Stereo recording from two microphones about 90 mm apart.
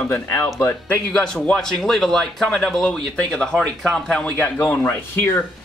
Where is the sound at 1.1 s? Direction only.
10° left (ahead or behind).